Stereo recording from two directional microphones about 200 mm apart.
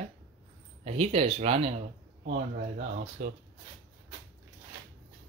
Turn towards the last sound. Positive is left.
turn(degrees=-40)  # may be behind; listen again after turning